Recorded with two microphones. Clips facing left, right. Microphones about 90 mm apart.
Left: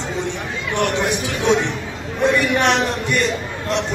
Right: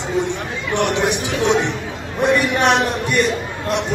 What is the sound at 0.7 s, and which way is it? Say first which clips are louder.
A man's voice: right 1 dB; 20° right (ahead or behind).